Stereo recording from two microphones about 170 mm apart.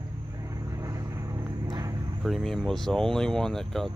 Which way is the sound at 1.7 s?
20° right (ahead or behind).